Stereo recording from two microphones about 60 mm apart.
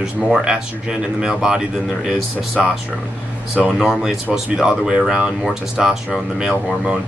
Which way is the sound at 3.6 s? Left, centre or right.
Centre.